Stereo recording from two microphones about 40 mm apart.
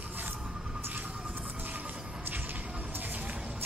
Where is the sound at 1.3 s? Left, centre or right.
Right.